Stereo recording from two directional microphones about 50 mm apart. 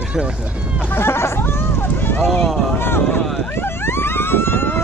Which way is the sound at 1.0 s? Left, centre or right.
Left.